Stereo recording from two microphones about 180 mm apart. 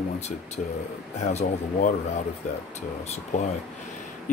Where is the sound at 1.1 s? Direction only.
40° left (ahead or behind).